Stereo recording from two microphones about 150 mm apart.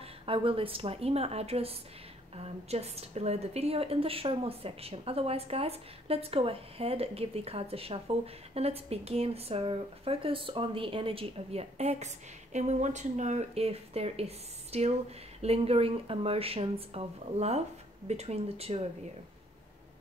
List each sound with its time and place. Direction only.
0.0 s a woman's voice: 35° right (ahead or behind)